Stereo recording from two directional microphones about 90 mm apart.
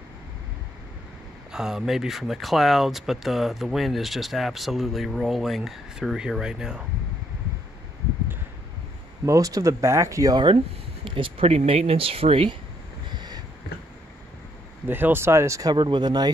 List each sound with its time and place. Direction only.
1.5 s speech: 5° right (ahead or behind)
9.2 s speech: 40° right (ahead or behind)
10.3 s speech: 65° right (ahead or behind)
11.1 s speech: 80° right
13.1 s a sound: 55° right (ahead or behind)
14.9 s speech: 25° right (ahead or behind)
15.7 s speech: 60° right (ahead or behind)